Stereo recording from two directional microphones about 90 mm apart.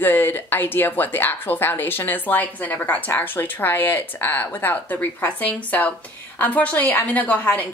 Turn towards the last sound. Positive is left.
turn(degrees=15)  # may be behind; listen again after turning